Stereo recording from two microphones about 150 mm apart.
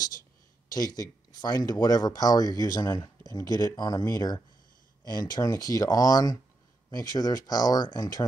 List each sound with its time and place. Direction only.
0.7 s speech: 25° left (ahead or behind)